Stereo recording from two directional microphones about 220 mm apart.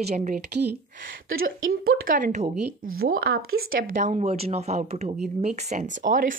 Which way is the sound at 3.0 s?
45° right (ahead or behind).